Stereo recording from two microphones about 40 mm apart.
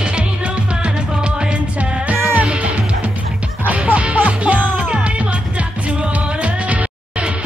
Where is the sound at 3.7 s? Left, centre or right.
Right.